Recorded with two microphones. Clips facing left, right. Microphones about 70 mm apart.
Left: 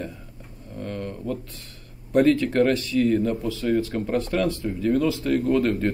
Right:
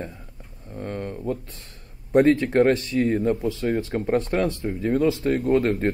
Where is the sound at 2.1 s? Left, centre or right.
Right.